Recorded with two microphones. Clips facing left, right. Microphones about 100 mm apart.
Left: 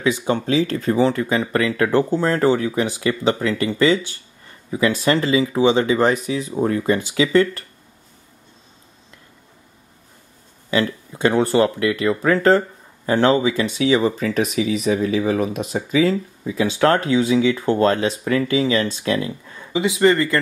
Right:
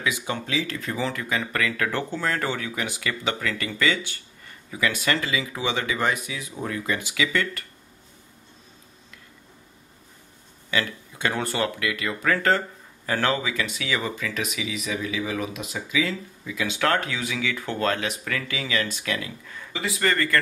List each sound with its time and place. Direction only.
0.0 s speech: 30° left (ahead or behind)
10.7 s speech: 30° left (ahead or behind)